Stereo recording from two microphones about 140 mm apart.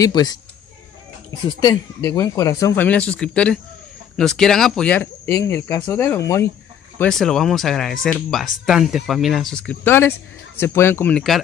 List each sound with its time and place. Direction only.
0.0 s speech: 30° left (ahead or behind)
1.6 s speech: 25° left (ahead or behind)
7.0 s speech: 5° left (ahead or behind)
11.1 s speech: centre (ahead or behind)